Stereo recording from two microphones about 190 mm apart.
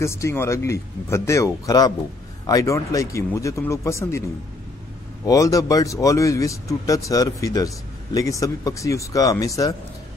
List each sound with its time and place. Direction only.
0.0 s speech: 15° left (ahead or behind)
5.2 s speech: 15° left (ahead or behind)